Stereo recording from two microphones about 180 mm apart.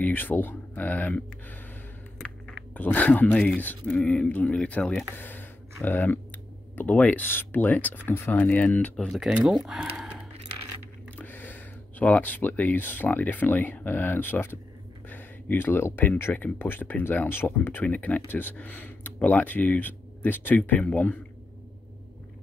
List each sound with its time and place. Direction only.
0.0 s speech: 10° left (ahead or behind)
5.1 s a sound: 10° left (ahead or behind)
6.7 s speech: 10° left (ahead or behind)
11.1 s speech: 10° left (ahead or behind)